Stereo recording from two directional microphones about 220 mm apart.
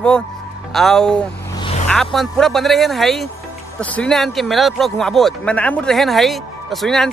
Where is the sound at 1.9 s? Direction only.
Centre (ahead or behind).